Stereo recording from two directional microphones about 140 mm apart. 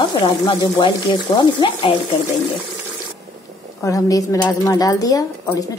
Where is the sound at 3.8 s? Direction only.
25° left (ahead or behind).